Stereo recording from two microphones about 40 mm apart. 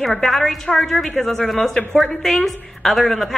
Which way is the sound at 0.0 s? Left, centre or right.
Centre.